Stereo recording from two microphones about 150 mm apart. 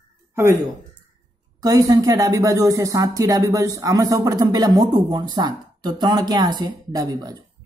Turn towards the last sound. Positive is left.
turn(degrees=-25)  # may be behind; listen again after turning